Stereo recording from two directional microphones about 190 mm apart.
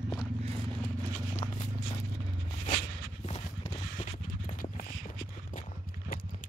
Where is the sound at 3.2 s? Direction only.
35° left (ahead or behind).